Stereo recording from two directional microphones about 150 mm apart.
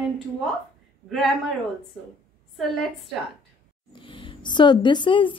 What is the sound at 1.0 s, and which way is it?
Speech, centre (ahead or behind).